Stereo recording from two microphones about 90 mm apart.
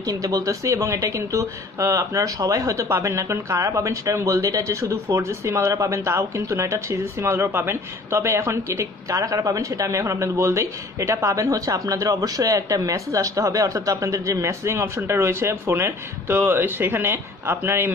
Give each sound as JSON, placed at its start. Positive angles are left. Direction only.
{"t": 0.1, "sound": "speech", "side_deg": -40}